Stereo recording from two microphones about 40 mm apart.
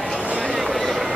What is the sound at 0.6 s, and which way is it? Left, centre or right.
Vehicle, centre.